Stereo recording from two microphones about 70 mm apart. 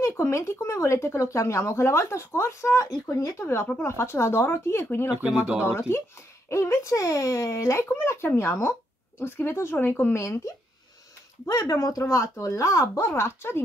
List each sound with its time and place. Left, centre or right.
0.0 s speech: left
5.1 s speech: centre
5.6 s speech: left
11.4 s speech: left